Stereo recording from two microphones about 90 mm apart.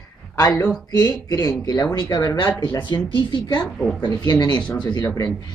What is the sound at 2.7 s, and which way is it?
Speech, 60° left (ahead or behind).